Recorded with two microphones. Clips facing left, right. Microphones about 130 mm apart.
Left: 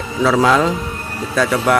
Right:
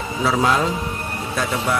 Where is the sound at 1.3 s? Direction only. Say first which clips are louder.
Left 7 dB; 80° left.